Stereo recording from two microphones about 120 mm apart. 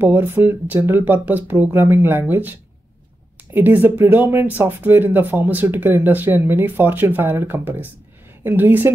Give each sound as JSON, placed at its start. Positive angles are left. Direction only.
{"t": 0.0, "sound": "speech", "side_deg": -20}
{"t": 3.5, "sound": "speech", "side_deg": -15}